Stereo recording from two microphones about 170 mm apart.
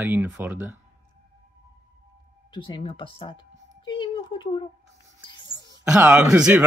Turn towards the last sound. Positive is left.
turn(degrees=-10)  # may be behind; listen again after turning